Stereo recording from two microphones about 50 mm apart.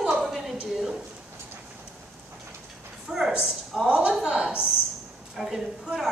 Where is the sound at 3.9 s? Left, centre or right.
Right.